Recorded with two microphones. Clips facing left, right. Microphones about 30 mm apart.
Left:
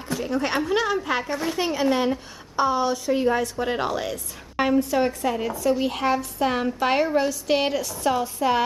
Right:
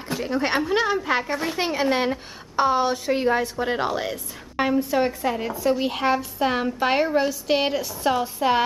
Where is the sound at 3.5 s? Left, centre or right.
Centre.